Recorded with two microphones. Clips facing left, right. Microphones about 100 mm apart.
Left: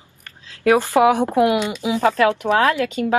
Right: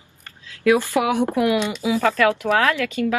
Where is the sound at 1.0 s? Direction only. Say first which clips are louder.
Left 5 dB; 30° left (ahead or behind).